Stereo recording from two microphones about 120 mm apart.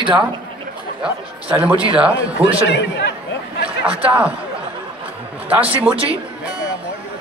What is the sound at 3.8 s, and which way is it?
Speech, 10° right (ahead or behind).